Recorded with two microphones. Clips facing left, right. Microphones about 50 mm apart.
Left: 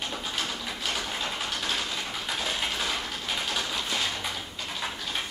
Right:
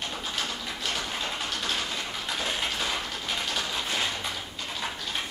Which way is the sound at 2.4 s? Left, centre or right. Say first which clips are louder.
Right 1 dB; centre.